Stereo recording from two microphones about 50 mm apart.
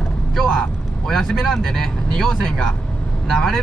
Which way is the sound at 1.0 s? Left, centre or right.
Centre.